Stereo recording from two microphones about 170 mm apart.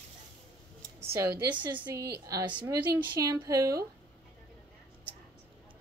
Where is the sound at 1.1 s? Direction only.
15° right (ahead or behind).